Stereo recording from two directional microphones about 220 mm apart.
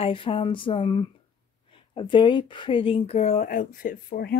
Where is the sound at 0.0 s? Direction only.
25° left (ahead or behind).